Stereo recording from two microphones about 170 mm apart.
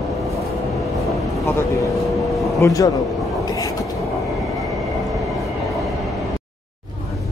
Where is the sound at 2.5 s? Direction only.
20° left (ahead or behind).